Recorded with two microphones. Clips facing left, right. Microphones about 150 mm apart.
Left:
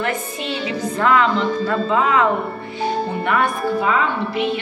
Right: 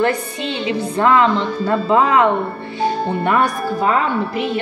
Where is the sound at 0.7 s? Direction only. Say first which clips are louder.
Right 3 dB; 30° right (ahead or behind).